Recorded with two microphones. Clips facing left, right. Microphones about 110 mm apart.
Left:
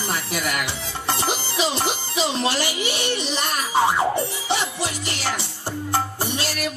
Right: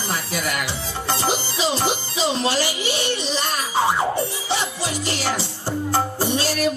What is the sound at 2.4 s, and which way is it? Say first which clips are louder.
Speech: right 1 dB; 20° left (ahead or behind).